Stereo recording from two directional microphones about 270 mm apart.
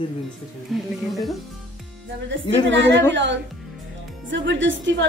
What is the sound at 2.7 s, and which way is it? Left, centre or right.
A woman's voice, right.